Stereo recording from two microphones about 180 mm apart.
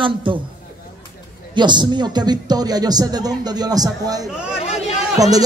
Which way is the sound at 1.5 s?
25° right (ahead or behind).